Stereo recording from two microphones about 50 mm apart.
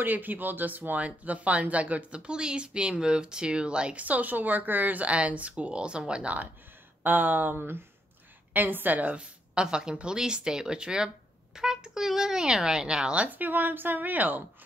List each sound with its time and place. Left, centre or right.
0.0 s speech: right; by 4.0 s centre
4.0 s a woman's voice: right
7.0 s a woman's voice: right
9.2 s speech: centre
13.3 s a woman's voice: right